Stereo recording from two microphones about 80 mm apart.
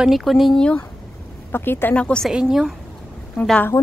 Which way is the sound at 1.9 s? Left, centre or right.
Centre.